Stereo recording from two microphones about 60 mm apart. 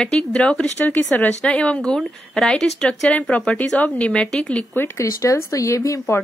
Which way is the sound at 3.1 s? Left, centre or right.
Left.